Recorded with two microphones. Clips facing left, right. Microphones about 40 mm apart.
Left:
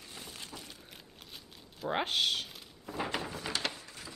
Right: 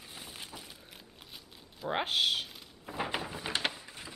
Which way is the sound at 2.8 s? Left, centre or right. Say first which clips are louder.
Even; centre.